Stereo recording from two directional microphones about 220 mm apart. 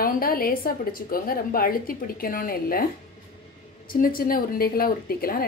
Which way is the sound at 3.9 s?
40° left (ahead or behind).